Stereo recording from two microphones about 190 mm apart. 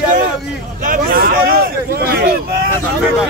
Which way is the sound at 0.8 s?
45° right (ahead or behind).